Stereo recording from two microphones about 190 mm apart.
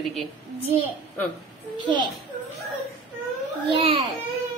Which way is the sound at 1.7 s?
25° right (ahead or behind).